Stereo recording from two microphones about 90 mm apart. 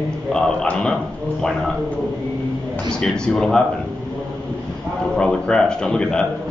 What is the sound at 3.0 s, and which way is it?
Speech, 10° left (ahead or behind).